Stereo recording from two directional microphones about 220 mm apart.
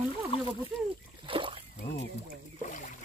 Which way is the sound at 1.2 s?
25° right (ahead or behind).